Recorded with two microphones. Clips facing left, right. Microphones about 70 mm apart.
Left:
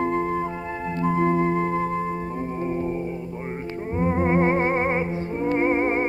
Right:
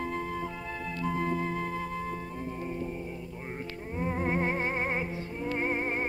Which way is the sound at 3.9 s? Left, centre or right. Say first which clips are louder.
Left 9 dB; left.